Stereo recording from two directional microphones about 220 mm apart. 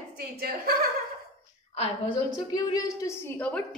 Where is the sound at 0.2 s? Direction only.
45° right (ahead or behind).